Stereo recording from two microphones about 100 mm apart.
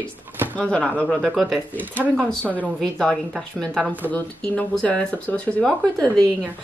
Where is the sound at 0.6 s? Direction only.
10° left (ahead or behind).